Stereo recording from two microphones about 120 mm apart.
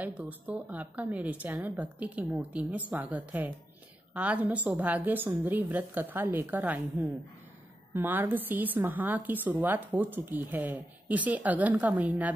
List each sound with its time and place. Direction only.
0.0 s a woman's voice: 10° right (ahead or behind)